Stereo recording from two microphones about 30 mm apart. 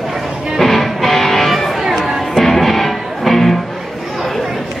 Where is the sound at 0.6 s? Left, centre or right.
Centre.